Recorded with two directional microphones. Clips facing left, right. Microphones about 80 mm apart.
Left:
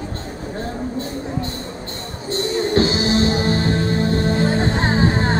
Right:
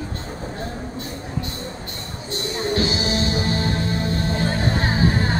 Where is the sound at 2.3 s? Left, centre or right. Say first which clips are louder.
Left 5 dB; left.